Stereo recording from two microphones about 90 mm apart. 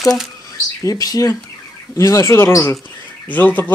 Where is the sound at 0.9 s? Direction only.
45° left (ahead or behind).